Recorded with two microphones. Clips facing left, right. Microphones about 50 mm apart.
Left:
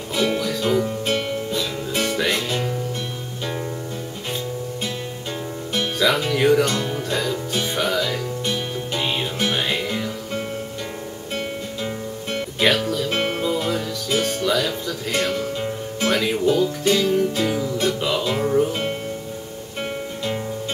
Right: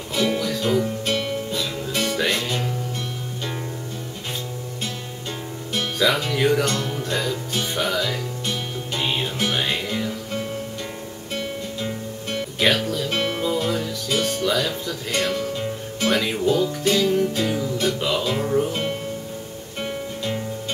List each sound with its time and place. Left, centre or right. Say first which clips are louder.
0.1 s music: left 1 dB; centre
5.9 s music: left 1 dB; centre
6.6 s music: left 2 dB; centre
7.8 s music: left 1 dB; centre
11.3 s music: even; centre
12.5 s music: left 1 dB; centre
13.1 s music: even; centre
13.4 s music: even; centre
14.4 s music: left 1 dB; centre
15.2 s music: left 1 dB; centre
16.1 s music: left 1 dB; centre